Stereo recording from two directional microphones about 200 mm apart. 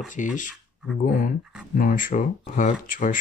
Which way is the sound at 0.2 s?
40° left (ahead or behind).